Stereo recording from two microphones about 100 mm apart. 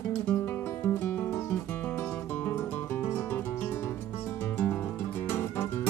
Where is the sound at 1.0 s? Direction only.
20° left (ahead or behind).